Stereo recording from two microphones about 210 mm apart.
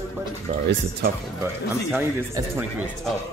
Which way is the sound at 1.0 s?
50° right (ahead or behind).